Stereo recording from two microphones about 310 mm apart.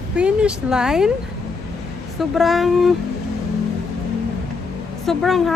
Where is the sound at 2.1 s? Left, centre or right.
Centre.